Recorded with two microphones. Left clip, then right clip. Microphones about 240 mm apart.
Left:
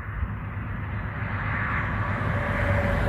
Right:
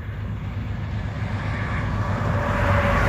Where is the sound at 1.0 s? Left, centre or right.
Centre.